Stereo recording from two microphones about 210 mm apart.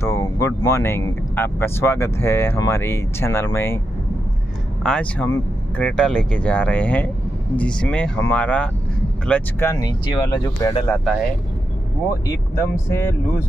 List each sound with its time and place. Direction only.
0.0 s speech: 15° left (ahead or behind)
4.8 s speech: 5° left (ahead or behind); by 10.9 s 20° left (ahead or behind)
12.8 s speech: 10° left (ahead or behind)